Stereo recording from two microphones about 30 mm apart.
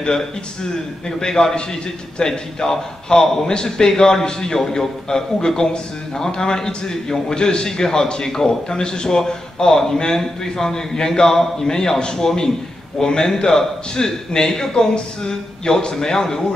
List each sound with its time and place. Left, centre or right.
0.0 s a man's voice: centre